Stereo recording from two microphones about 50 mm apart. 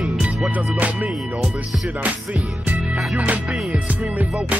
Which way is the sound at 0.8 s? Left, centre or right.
Right.